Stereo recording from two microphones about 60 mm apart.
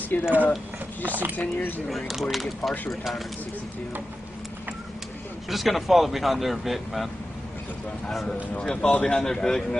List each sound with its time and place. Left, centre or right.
0.1 s speech: left
1.0 s speech: right
1.3 s speech: left
1.9 s speech: centre
5.5 s speech: centre
8.1 s speech: centre
8.5 s a man's voice: centre